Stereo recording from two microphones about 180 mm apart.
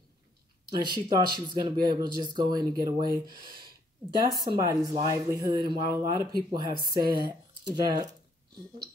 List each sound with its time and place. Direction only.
0.7 s speech: 25° right (ahead or behind)